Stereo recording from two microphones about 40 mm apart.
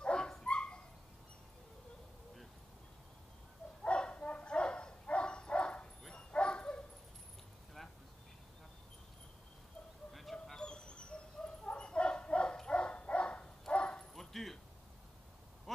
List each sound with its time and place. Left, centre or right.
0.0 s dog: left
3.8 s bow-wow: left
10.3 s dog: centre
10.6 s dog: left
11.6 s bow-wow: left
12.6 s dog: left
14.1 s dog: centre